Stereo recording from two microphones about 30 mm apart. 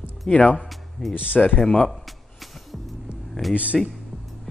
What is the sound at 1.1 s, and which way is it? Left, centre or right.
Speech, left.